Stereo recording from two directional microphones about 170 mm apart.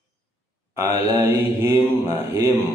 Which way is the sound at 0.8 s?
15° right (ahead or behind).